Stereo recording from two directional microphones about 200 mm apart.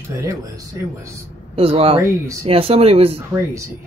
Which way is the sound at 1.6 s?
30° right (ahead or behind).